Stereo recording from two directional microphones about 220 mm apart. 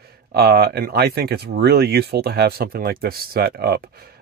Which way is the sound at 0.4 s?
45° right (ahead or behind).